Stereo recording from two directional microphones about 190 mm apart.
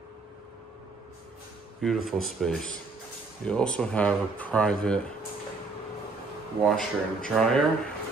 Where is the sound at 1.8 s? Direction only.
Centre (ahead or behind).